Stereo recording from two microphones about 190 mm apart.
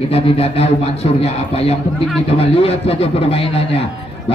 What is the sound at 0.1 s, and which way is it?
Speech, 30° left (ahead or behind).